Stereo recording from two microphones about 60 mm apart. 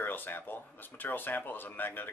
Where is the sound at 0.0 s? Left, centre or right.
Left.